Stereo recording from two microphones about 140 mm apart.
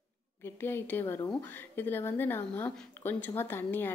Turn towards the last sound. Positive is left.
turn(degrees=15)  # may be behind; listen again after turning